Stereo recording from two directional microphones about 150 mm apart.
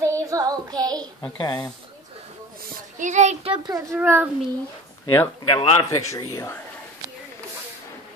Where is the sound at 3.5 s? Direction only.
25° right (ahead or behind).